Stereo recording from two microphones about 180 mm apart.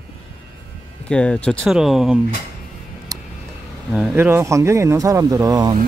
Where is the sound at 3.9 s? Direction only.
Centre (ahead or behind).